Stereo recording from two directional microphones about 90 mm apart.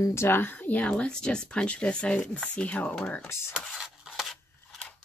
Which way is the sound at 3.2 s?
30° left (ahead or behind).